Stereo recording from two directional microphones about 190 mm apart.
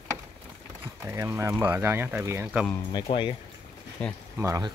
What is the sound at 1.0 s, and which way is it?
Speech, 15° right (ahead or behind).